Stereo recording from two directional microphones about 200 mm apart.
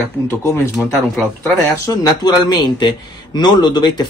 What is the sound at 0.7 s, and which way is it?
Speech, 15° left (ahead or behind).